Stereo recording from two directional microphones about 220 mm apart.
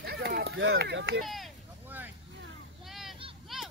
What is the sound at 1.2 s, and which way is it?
Vehicle, centre (ahead or behind).